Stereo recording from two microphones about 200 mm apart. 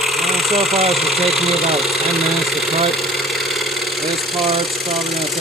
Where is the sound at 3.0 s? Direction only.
Centre (ahead or behind).